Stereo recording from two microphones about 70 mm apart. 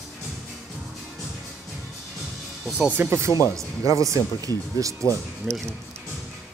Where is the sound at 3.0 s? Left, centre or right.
Right.